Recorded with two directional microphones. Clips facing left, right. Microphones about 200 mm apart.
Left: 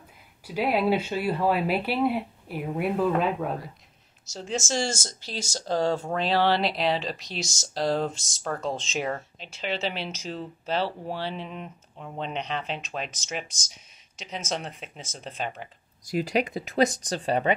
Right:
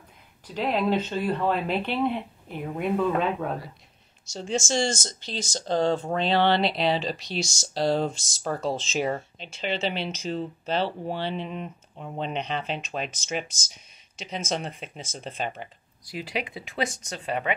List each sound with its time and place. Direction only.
0.5 s speech: 10° left (ahead or behind)
16.1 s speech: 45° left (ahead or behind)